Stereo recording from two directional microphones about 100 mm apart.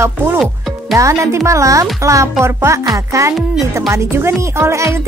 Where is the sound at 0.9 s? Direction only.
30° right (ahead or behind).